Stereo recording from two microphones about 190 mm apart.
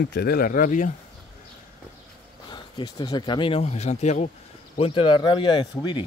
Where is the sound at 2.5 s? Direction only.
20° left (ahead or behind).